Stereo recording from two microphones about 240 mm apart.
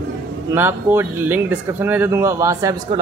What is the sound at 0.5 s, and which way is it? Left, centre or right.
Speech, centre.